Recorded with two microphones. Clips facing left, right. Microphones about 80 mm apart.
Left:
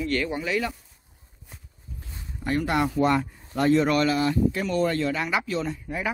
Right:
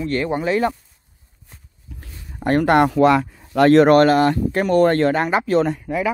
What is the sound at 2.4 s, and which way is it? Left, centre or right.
Speech, right.